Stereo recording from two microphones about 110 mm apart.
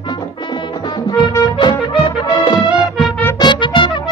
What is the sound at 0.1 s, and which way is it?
Music, 45° left (ahead or behind).